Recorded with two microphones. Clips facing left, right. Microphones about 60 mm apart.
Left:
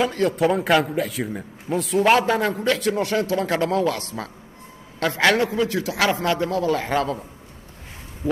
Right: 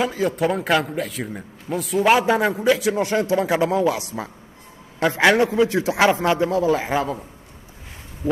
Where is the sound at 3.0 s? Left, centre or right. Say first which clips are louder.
Right 2 dB; right.